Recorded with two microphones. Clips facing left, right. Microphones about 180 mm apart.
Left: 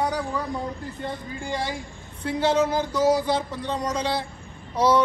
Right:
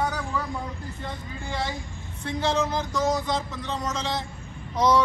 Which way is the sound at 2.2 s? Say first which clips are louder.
Left 4 dB; 10° left (ahead or behind).